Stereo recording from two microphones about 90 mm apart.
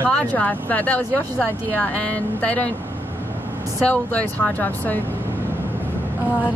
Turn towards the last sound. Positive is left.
turn(degrees=20)  # may be behind; listen again after turning